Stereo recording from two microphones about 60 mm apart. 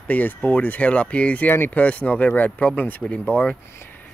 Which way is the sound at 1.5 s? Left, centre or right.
Left.